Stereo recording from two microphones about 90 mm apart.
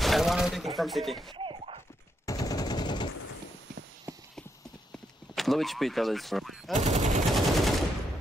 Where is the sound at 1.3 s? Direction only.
70° right (ahead or behind).